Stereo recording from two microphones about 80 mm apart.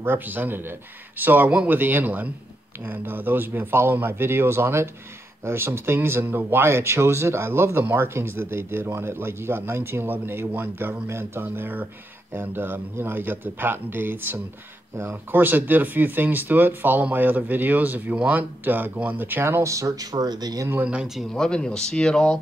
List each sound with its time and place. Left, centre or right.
0.0 s speech: right
20.8 s speech: centre
21.2 s speech: centre